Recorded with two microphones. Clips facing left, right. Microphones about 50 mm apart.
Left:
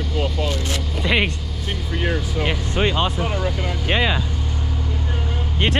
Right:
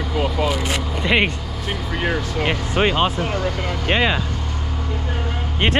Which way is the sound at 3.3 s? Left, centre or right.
Centre.